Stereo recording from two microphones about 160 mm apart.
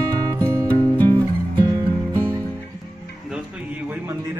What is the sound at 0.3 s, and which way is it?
Music, 15° right (ahead or behind).